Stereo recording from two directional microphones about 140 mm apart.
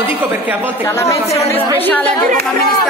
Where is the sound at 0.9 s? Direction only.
20° left (ahead or behind).